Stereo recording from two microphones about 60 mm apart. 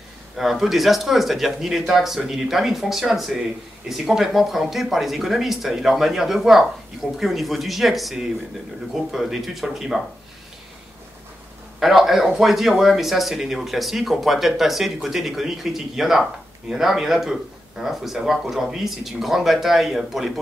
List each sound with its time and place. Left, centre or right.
0.4 s speech: centre
11.8 s speech: centre